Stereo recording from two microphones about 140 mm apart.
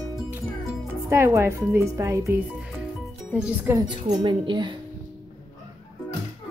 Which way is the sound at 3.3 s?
10° right (ahead or behind).